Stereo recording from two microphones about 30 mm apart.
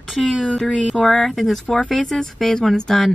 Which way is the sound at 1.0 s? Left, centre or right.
Centre.